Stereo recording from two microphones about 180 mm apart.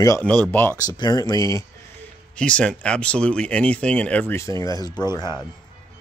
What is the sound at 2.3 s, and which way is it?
Speech, 5° left (ahead or behind).